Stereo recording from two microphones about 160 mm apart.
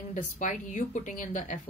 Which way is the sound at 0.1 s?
50° left (ahead or behind).